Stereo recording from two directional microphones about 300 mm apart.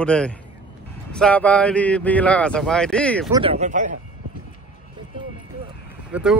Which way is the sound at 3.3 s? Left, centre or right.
Centre.